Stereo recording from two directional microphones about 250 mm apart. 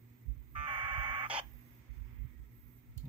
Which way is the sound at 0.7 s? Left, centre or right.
Right.